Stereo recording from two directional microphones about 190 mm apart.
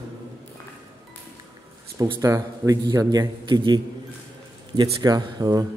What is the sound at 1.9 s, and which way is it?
A man's voice, 20° right (ahead or behind).